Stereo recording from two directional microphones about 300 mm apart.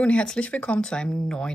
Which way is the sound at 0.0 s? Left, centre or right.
Centre.